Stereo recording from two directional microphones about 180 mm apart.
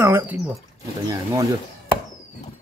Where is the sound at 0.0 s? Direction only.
10° right (ahead or behind).